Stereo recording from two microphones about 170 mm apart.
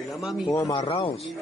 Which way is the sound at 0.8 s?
35° left (ahead or behind).